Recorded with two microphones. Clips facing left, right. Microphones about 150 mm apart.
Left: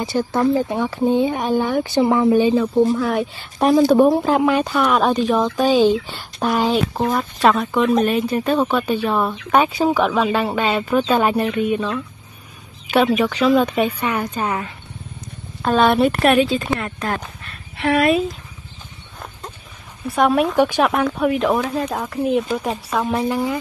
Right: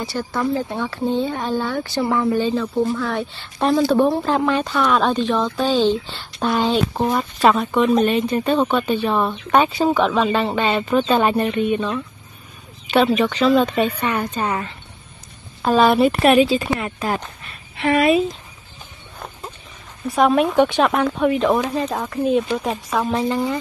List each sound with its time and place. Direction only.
0.0 s speech: 20° left (ahead or behind); by 18.2 s centre (ahead or behind)
20.1 s speech: centre (ahead or behind)